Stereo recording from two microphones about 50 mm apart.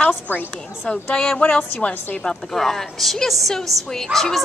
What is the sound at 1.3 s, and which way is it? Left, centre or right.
Speech, left.